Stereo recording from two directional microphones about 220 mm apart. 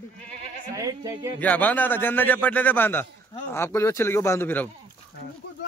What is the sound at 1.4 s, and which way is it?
A man's voice, 5° left (ahead or behind).